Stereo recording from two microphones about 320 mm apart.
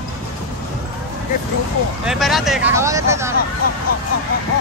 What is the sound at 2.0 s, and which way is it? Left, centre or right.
Speech, centre.